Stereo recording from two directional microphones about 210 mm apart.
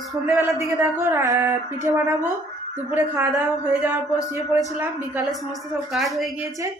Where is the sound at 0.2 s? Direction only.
10° right (ahead or behind).